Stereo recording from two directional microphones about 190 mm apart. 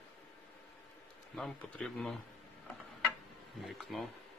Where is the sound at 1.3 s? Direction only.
5° left (ahead or behind).